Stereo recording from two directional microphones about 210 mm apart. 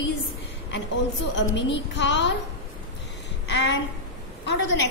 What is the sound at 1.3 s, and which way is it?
A woman's voice, 60° left (ahead or behind).